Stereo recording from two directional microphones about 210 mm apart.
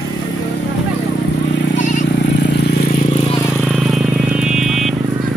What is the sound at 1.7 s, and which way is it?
Vehicle, 35° left (ahead or behind).